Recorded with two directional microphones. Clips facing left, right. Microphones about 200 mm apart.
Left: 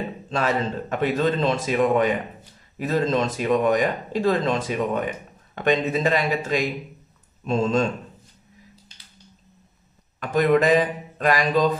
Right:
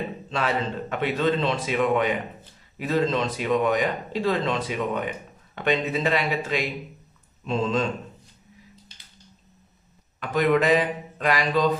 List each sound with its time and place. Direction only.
0.3 s speech: 45° left (ahead or behind)
10.3 s speech: 45° left (ahead or behind)